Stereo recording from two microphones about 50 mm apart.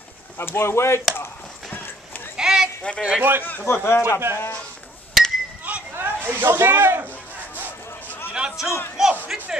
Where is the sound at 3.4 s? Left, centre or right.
Left.